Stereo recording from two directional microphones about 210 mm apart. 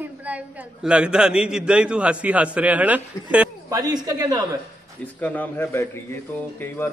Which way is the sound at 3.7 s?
20° right (ahead or behind).